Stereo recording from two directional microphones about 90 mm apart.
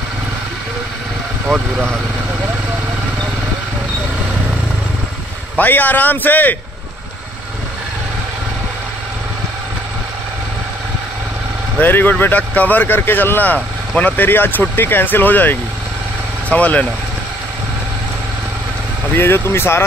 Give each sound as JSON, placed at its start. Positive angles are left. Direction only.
{"t": 1.5, "sound": "speech", "side_deg": 0}
{"t": 5.6, "sound": "speech", "side_deg": 20}
{"t": 11.8, "sound": "speech", "side_deg": 20}
{"t": 19.1, "sound": "speech", "side_deg": 25}